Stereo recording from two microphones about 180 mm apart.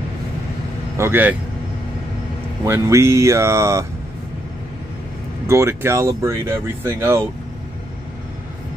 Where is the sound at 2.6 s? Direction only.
15° right (ahead or behind).